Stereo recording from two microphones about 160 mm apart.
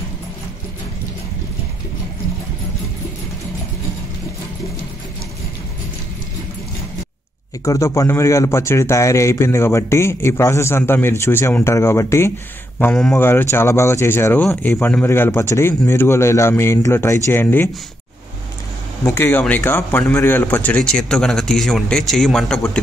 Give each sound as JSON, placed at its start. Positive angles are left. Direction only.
{"t": 7.6, "sound": "speech", "side_deg": 20}
{"t": 12.7, "sound": "speech", "side_deg": 5}
{"t": 19.0, "sound": "speech", "side_deg": 15}